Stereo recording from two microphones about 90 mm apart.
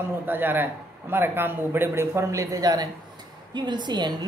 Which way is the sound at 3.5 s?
55° right (ahead or behind).